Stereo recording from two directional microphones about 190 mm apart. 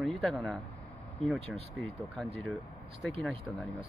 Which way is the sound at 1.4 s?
30° right (ahead or behind).